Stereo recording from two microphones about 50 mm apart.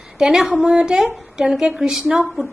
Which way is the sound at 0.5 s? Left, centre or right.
Centre.